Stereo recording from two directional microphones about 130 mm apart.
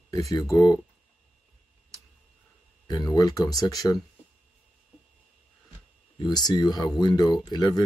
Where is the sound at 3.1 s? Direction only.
25° left (ahead or behind).